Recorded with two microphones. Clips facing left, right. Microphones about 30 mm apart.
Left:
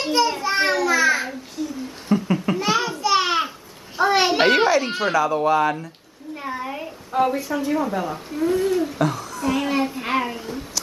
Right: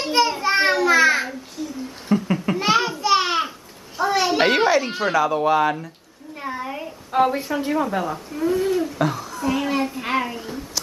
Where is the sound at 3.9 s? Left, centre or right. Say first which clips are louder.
Left 2 dB; left.